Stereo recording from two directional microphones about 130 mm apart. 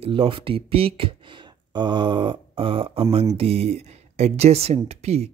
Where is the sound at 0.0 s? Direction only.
45° right (ahead or behind).